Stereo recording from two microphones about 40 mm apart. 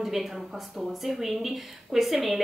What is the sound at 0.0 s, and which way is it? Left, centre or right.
A woman's voice, centre.